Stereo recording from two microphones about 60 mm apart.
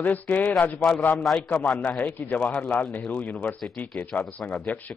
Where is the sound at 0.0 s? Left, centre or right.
Left.